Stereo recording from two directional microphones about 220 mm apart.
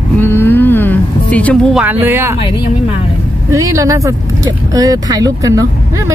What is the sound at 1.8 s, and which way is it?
Speech, 10° right (ahead or behind).